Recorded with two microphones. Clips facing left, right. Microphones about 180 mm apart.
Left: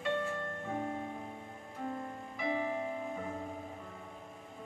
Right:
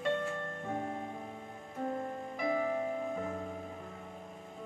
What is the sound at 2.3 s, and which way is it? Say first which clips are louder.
Music: right 2 dB; 45° right (ahead or behind).